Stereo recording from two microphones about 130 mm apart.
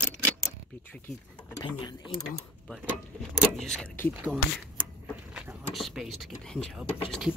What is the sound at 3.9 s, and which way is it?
Speech, 15° left (ahead or behind).